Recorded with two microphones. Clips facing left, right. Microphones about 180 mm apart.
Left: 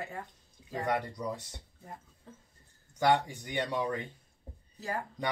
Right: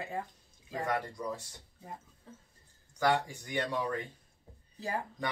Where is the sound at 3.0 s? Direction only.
20° left (ahead or behind).